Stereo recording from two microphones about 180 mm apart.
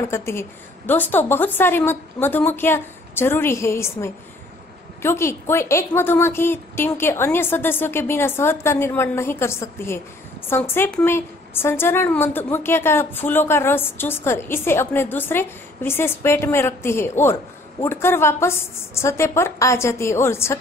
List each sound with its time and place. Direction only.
0.1 s a woman's voice: 15° left (ahead or behind)